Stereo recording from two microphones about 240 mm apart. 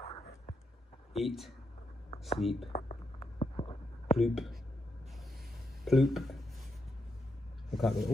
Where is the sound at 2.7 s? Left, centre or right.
Left.